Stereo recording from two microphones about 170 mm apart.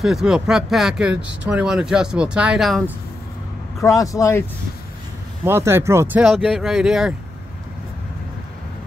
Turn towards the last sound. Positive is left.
turn(degrees=-5)  # may be behind; listen again after turning